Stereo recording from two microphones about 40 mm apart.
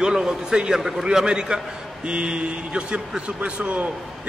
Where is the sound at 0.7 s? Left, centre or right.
Centre.